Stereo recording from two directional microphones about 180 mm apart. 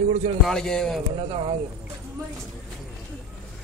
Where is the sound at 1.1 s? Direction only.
35° right (ahead or behind).